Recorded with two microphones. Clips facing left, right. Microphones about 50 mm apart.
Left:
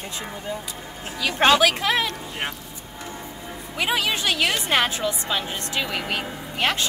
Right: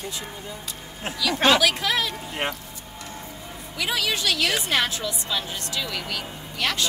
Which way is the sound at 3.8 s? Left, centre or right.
Left.